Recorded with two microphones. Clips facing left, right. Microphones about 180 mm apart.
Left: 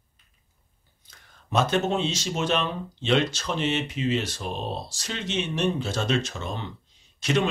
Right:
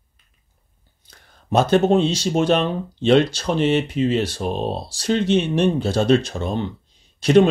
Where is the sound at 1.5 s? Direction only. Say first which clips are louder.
Right 8 dB; 35° right (ahead or behind).